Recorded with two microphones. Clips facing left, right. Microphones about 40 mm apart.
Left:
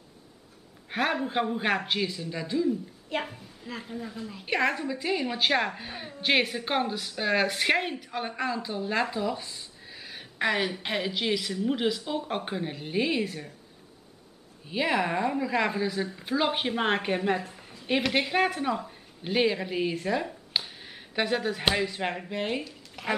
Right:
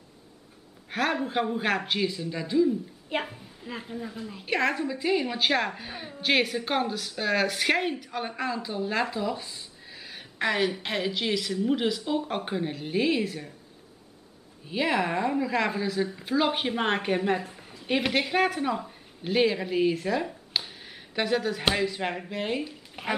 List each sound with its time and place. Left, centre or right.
0.8 s a woman's voice: centre
14.7 s a woman's voice: centre
22.7 s a sound: centre